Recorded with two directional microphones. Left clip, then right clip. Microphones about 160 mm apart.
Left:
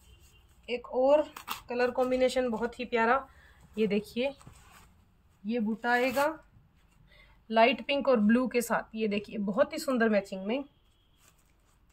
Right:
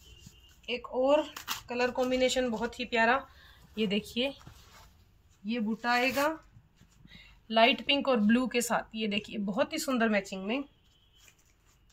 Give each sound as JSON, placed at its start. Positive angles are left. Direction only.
{"t": 0.7, "sound": "a woman's voice", "side_deg": 20}
{"t": 5.8, "sound": "a woman's voice", "side_deg": 30}